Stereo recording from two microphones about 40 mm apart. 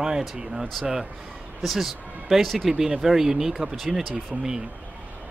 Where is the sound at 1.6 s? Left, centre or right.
Centre.